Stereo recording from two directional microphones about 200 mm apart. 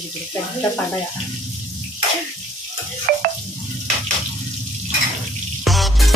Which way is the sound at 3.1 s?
50° right (ahead or behind).